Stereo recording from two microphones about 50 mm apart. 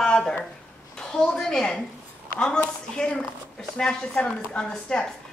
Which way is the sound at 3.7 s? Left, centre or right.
Centre.